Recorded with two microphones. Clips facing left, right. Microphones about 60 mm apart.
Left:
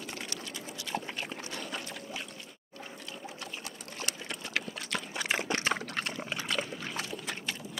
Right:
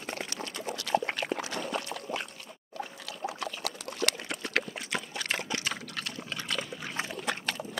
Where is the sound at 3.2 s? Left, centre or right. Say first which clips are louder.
Right 11 dB; right.